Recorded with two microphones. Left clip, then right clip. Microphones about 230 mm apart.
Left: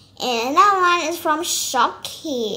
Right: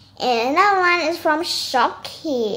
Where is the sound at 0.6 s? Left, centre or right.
Left.